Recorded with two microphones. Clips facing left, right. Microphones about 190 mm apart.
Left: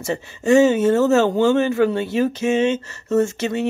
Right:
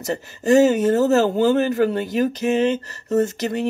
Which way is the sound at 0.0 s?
40° right (ahead or behind).